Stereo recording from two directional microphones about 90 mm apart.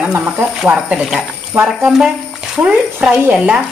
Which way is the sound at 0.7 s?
5° right (ahead or behind).